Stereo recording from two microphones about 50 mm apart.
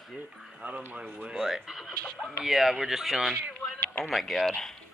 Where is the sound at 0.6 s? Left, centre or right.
Right.